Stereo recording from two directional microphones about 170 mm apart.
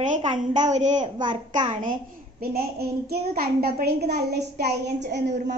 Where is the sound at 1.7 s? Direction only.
50° right (ahead or behind).